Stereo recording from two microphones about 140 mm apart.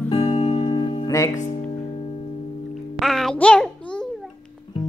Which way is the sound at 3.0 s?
Centre (ahead or behind).